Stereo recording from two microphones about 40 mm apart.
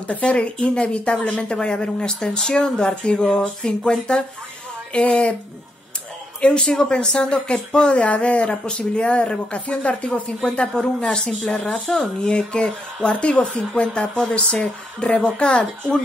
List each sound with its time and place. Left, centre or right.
0.0 s speech: left; by 4.2 s centre
4.9 s speech: left
6.4 s speech: centre
11.1 s speech: centre
12.2 s speech: left